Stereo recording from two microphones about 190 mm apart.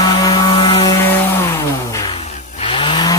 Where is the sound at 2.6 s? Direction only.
30° left (ahead or behind).